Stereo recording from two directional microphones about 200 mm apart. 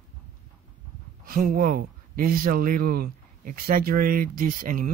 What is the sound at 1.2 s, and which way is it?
Speech, 45° right (ahead or behind).